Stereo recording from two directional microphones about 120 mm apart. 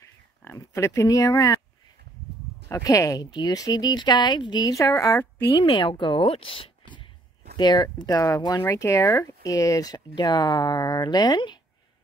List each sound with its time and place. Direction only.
0.4 s speech: 20° left (ahead or behind)
2.7 s speech: 30° left (ahead or behind)
5.5 s speech: 40° left (ahead or behind)
7.5 s speech: 35° left (ahead or behind)